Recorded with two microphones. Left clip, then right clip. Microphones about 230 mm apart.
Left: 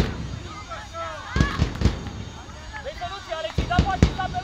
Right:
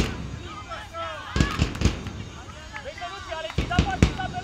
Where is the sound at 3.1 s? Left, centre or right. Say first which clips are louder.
Left 3 dB; left.